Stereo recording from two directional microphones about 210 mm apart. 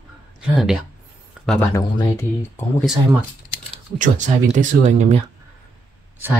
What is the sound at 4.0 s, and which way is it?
Speech, 35° right (ahead or behind).